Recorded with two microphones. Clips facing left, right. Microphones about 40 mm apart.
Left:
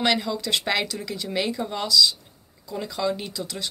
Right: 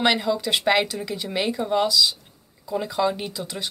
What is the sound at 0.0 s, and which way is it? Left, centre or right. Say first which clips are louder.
Speech: right 2 dB; centre.